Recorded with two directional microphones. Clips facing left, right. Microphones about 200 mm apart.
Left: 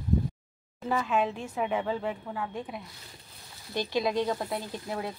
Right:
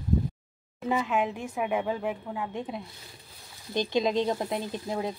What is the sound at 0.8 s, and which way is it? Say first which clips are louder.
Speech: right 1 dB; 15° right (ahead or behind).